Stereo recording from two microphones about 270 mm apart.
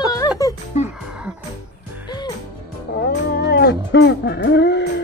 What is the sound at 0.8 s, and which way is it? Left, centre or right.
Music, left.